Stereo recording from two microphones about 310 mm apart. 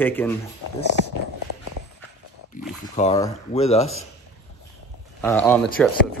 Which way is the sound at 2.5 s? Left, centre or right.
Left.